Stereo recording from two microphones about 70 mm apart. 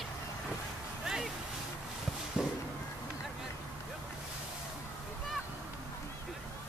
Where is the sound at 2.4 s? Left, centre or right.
Centre.